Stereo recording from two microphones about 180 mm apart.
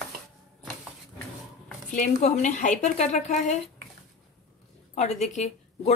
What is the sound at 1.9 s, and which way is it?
A woman's voice, 40° left (ahead or behind).